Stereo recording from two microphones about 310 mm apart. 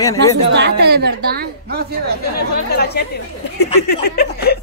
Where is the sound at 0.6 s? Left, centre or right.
Right.